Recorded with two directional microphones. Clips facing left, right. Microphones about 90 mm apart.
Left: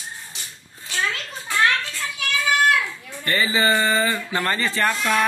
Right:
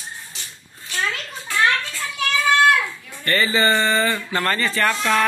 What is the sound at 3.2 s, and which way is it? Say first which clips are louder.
A man's voice: right 2 dB; 15° left (ahead or behind).